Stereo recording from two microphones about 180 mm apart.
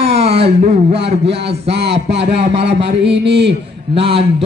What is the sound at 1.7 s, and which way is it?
Speech, 70° right (ahead or behind).